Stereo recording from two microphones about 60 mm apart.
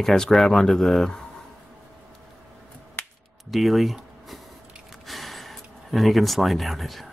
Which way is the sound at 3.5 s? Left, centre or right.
Centre.